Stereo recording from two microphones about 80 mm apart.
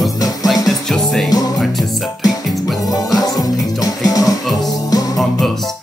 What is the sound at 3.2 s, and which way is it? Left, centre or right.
Music, left.